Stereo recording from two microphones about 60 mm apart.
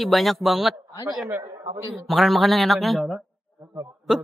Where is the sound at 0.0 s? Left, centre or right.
Centre.